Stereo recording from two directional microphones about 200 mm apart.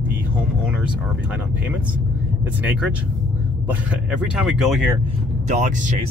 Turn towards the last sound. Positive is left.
turn(degrees=-40)  # may be behind; listen again after turning